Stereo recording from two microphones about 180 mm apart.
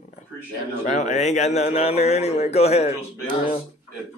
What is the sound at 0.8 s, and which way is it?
A man's voice, 40° left (ahead or behind).